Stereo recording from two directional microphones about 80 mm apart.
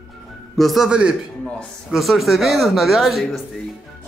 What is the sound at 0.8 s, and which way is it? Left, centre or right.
Speech, centre.